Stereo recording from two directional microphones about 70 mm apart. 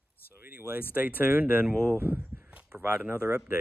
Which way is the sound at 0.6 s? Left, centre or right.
Right.